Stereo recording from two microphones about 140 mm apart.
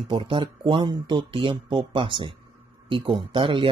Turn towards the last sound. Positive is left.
turn(degrees=-35)  # may be behind; listen again after turning